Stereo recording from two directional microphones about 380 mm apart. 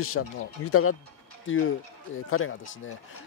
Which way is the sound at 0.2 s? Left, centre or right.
Left.